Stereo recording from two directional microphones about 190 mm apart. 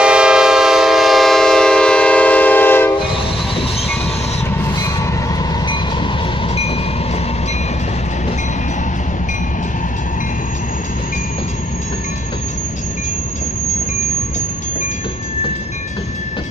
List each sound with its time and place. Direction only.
0.0 s train: 5° right (ahead or behind)
6.5 s train: 30° left (ahead or behind)